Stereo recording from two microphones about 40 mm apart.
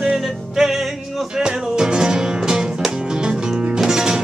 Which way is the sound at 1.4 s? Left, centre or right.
Centre.